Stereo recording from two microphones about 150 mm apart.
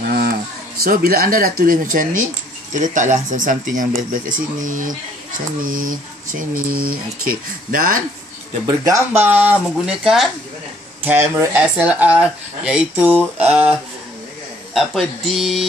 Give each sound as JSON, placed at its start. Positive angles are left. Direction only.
{"t": 0.1, "sound": "a sound", "side_deg": -90}
{"t": 0.8, "sound": "speech", "side_deg": -75}
{"t": 8.6, "sound": "speech", "side_deg": -20}